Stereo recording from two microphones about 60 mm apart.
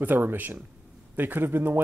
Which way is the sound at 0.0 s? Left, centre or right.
Right.